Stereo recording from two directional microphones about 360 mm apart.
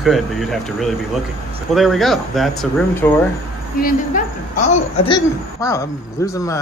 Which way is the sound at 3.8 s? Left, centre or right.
Left.